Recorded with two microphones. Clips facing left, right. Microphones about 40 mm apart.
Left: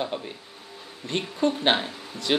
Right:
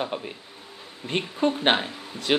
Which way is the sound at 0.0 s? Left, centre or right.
Centre.